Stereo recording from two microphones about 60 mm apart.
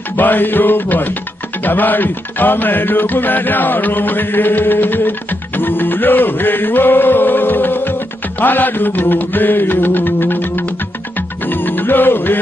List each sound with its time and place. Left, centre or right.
0.1 s music: left